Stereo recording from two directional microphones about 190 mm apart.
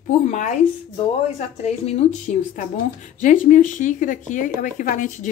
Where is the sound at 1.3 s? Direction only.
35° left (ahead or behind).